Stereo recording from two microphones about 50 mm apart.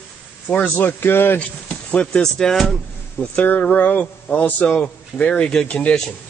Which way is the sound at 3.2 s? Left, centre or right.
Left.